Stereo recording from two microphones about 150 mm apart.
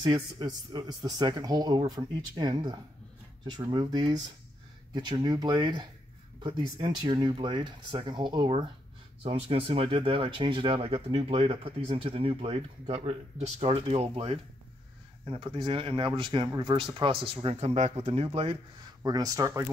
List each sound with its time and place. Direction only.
0.0 s speech: 30° right (ahead or behind)
19.0 s speech: 25° right (ahead or behind)